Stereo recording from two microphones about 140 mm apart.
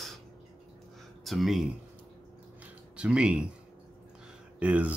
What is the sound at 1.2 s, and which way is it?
Speech, centre (ahead or behind).